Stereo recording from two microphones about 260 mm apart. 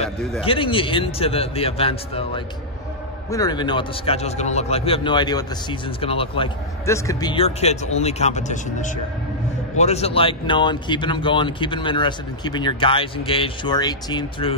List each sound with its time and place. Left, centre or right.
0.4 s a man's voice: centre